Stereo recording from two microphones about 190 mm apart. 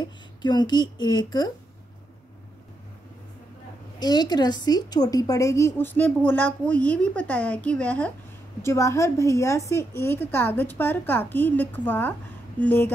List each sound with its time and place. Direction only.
0.0 s speech: 20° left (ahead or behind)
4.0 s a woman's voice: 20° left (ahead or behind)